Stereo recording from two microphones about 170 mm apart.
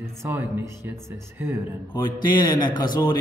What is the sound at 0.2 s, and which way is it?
Speech, 10° right (ahead or behind).